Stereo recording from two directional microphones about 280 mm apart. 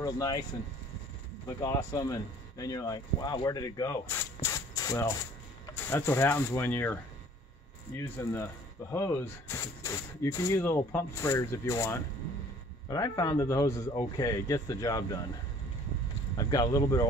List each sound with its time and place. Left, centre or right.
0.0 s speech: centre
1.5 s speech: centre
8.2 s speech: centre
16.3 s speech: centre